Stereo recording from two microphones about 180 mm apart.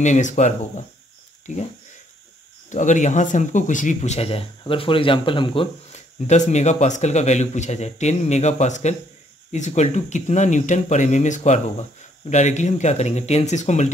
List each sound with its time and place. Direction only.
0.0 s speech: 40° left (ahead or behind)
2.7 s speech: 45° left (ahead or behind)